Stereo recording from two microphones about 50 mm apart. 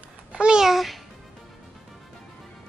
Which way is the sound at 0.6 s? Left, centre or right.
Centre.